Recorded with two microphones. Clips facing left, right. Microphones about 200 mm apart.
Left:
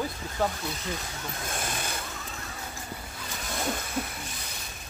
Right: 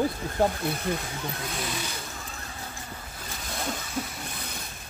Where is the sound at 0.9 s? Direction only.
55° right (ahead or behind).